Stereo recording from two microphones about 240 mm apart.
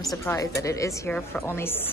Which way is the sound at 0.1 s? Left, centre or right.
Centre.